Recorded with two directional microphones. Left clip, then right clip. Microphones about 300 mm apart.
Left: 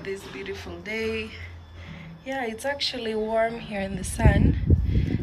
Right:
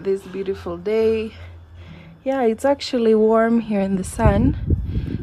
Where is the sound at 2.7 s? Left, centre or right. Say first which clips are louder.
Right 10 dB; centre.